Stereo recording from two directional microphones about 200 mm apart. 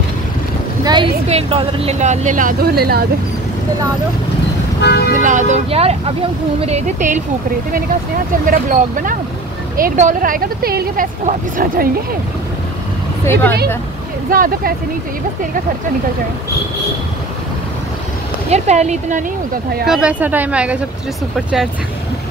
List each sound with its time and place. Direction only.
0.8 s speech: 25° right (ahead or behind); by 3.1 s 50° right (ahead or behind)
4.8 s speech: 55° left (ahead or behind)
5.2 s speech: 40° right (ahead or behind)
8.5 s speech: 40° right (ahead or behind)
13.2 s speech: 10° left (ahead or behind)
14.3 s speech: 45° right (ahead or behind)
18.5 s speech: 35° right (ahead or behind)
19.9 s speech: 5° right (ahead or behind)